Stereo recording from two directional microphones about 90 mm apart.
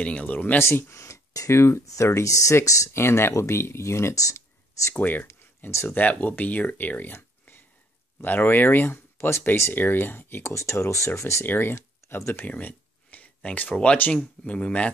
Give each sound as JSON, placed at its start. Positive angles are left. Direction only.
{"t": 0.0, "sound": "speech", "side_deg": 15}
{"t": 0.6, "sound": "speech", "side_deg": 30}
{"t": 4.9, "sound": "speech", "side_deg": 20}